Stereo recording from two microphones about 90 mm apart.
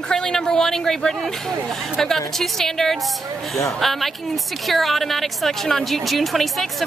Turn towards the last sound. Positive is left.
turn(degrees=0)  # may be behind; listen again after turning